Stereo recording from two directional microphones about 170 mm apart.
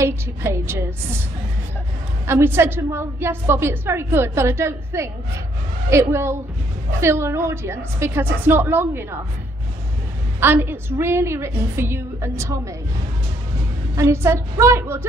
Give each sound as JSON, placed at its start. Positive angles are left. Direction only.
{"t": 0.0, "sound": "a woman's voice", "side_deg": -15}
{"t": 2.2, "sound": "a woman's voice", "side_deg": -15}
{"t": 10.4, "sound": "a woman's voice", "side_deg": -10}
{"t": 13.9, "sound": "a woman's voice", "side_deg": -15}